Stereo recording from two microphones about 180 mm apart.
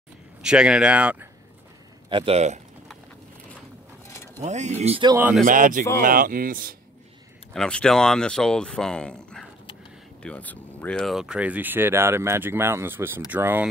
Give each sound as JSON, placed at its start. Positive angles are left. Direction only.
{"t": 0.4, "sound": "speech", "side_deg": -5}
{"t": 2.0, "sound": "speech", "side_deg": -30}
{"t": 4.4, "sound": "speech", "side_deg": -40}
{"t": 5.4, "sound": "speech", "side_deg": -45}
{"t": 7.5, "sound": "speech", "side_deg": 5}